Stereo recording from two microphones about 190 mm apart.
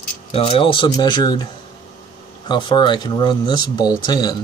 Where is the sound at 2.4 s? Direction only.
25° left (ahead or behind).